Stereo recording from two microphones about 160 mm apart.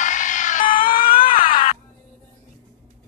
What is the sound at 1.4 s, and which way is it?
Music, 60° left (ahead or behind).